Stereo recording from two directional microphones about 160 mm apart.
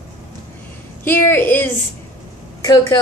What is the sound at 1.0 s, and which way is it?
A woman's voice, 15° left (ahead or behind).